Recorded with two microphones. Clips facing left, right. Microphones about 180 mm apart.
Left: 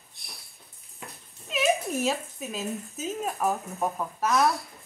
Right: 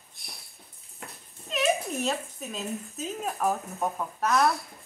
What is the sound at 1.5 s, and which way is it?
Speech, centre (ahead or behind).